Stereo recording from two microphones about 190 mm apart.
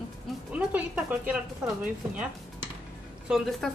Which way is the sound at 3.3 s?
Centre (ahead or behind).